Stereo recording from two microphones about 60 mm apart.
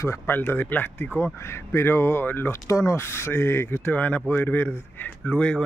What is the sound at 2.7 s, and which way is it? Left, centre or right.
Speech, left.